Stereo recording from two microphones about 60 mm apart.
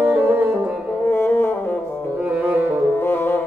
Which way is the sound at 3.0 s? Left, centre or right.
Left.